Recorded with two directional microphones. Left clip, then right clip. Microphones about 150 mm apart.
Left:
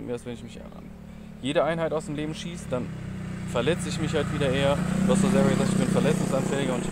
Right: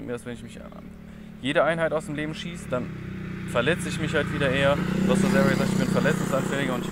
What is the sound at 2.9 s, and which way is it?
Vehicle, 45° left (ahead or behind).